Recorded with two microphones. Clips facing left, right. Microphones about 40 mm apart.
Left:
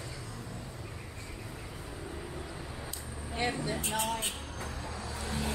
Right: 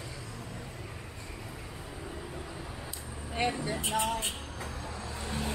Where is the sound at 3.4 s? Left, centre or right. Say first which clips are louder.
Right 1 dB; centre.